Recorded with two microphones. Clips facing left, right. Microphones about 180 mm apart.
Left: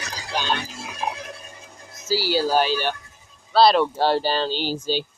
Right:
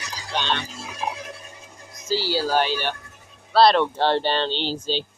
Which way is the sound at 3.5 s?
Centre (ahead or behind).